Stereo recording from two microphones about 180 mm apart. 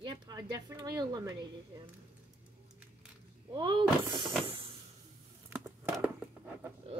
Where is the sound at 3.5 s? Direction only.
25° right (ahead or behind).